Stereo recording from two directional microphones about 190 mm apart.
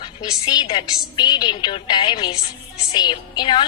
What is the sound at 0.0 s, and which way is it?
A woman's voice, 20° left (ahead or behind).